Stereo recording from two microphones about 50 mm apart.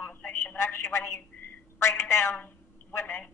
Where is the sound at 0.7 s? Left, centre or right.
Left.